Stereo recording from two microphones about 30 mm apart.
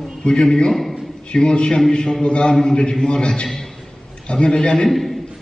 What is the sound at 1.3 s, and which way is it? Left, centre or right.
A man's voice, left.